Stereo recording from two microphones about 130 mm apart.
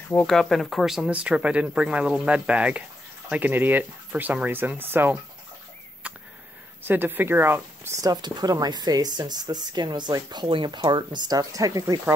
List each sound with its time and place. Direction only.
0.3 s speech: centre (ahead or behind); by 5.1 s 15° right (ahead or behind)
6.0 s a sound: 10° right (ahead or behind)
6.8 s speech: 15° right (ahead or behind)